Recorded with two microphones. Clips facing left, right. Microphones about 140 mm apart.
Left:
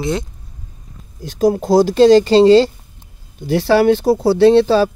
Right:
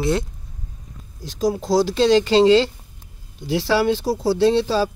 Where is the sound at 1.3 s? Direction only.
55° left (ahead or behind); by 2.6 s 35° left (ahead or behind).